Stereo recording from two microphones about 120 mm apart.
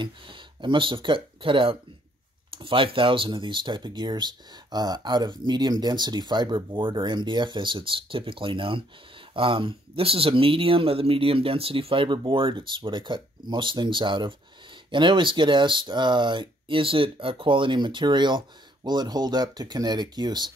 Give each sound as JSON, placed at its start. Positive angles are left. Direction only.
{"t": 0.0, "sound": "speech", "side_deg": -40}